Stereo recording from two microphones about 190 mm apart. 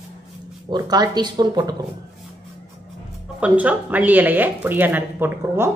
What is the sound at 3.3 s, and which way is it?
A woman's voice, 5° right (ahead or behind).